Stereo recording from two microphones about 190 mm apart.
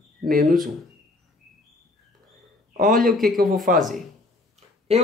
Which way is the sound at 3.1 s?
Centre (ahead or behind).